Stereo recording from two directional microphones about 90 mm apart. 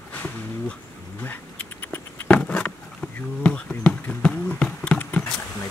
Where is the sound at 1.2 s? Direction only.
20° left (ahead or behind).